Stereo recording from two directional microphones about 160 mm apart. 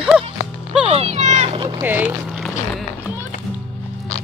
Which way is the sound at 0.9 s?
40° right (ahead or behind).